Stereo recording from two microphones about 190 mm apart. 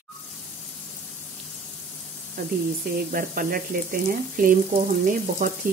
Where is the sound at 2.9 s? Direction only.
50° right (ahead or behind).